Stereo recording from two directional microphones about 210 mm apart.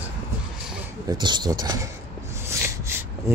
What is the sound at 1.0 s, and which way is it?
Speech, 20° right (ahead or behind).